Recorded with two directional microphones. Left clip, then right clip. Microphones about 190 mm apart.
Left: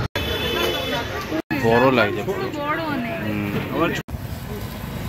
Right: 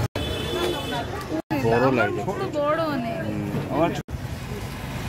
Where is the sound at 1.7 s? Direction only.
5° right (ahead or behind).